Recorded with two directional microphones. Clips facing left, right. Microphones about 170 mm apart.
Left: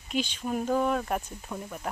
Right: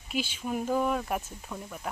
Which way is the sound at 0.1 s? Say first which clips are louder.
Left 2 dB; 5° right (ahead or behind).